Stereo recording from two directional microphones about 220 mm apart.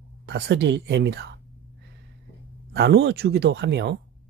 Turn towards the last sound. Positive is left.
turn(degrees=-50)  # may be behind; listen again after turning